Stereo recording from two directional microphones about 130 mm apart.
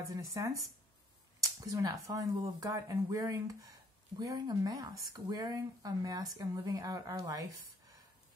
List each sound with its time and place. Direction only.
0.1 s speech: 25° right (ahead or behind)